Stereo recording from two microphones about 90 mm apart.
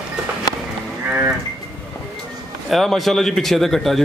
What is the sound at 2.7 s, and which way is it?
A man's voice, centre (ahead or behind).